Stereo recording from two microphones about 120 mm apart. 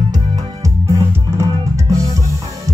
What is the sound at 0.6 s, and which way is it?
Music, 25° right (ahead or behind).